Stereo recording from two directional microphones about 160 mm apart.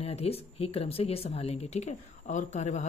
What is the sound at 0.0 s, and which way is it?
Speech, 40° left (ahead or behind).